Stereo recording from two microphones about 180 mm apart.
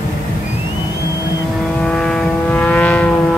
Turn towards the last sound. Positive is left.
turn(degrees=5)  # may be behind; listen again after turning